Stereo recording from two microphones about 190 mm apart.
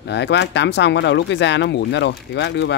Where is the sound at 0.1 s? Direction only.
65° left (ahead or behind).